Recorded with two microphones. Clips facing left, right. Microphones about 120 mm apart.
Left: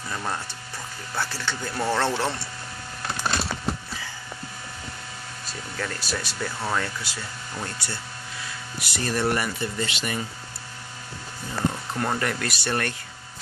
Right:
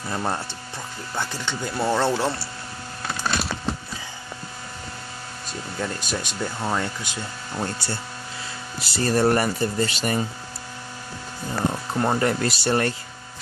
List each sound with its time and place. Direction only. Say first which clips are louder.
0.1 s speech: right 4 dB; 30° right (ahead or behind)
1.1 s speech: right 1 dB; 20° right (ahead or behind)
5.8 s speech: right 2 dB; 20° right (ahead or behind)
7.1 s speech: right 3 dB; 30° right (ahead or behind)
11.9 s speech: right 5 dB; 25° right (ahead or behind)